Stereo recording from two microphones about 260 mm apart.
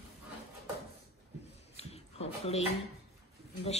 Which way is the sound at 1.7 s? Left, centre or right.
Left.